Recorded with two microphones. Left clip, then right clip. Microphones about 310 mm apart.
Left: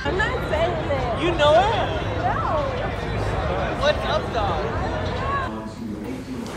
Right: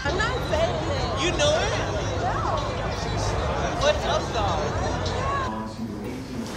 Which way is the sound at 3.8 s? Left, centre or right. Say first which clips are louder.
Left 1 dB; right.